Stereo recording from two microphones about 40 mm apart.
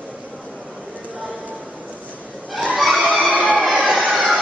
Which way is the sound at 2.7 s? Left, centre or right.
Centre.